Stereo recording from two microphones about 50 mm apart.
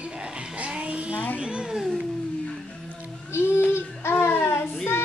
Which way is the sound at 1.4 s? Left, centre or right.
Centre.